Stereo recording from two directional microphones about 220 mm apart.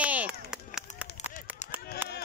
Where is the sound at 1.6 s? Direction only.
30° left (ahead or behind).